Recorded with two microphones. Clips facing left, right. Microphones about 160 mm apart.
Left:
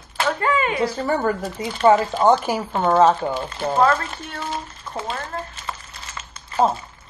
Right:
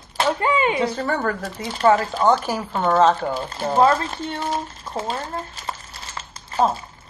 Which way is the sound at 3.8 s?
25° right (ahead or behind).